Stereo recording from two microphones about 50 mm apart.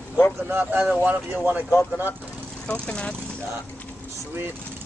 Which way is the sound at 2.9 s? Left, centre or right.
Left.